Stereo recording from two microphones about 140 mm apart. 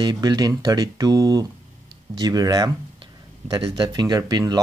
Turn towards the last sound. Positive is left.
turn(degrees=-30)  # may be behind; listen again after turning